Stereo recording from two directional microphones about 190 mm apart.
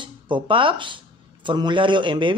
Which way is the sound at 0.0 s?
25° right (ahead or behind).